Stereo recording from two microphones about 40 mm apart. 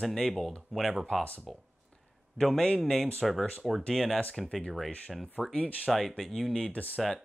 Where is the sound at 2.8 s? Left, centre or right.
Centre.